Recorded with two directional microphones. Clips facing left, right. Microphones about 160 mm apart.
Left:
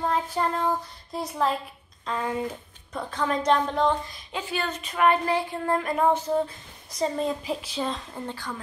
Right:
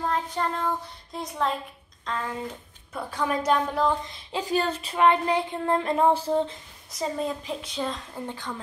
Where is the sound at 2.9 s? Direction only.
10° right (ahead or behind).